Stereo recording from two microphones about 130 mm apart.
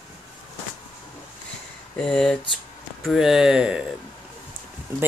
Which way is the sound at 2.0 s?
5° left (ahead or behind).